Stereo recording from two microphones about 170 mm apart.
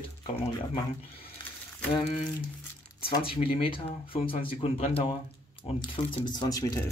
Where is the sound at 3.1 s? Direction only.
30° left (ahead or behind).